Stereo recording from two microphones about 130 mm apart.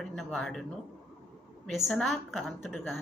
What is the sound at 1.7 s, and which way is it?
A woman's voice, centre (ahead or behind).